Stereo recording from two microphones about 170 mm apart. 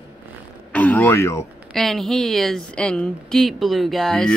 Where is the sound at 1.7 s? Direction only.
Centre (ahead or behind).